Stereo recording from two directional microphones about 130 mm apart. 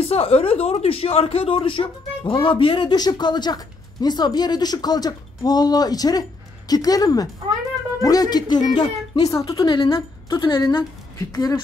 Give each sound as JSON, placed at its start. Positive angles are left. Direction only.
{"t": 0.0, "sound": "speech", "side_deg": 50}